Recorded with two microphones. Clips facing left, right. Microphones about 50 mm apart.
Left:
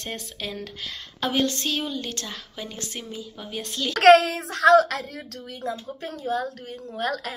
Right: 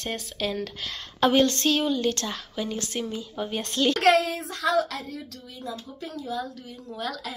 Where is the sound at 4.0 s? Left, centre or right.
Left.